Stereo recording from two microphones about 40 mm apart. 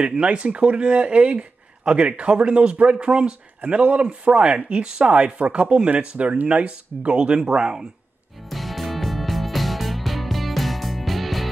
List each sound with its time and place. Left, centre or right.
0.0 s speech: right
3.6 s speech: right; by 7.8 s centre
8.5 s music: centre